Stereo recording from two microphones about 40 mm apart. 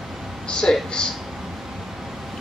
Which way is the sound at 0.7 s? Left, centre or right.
Centre.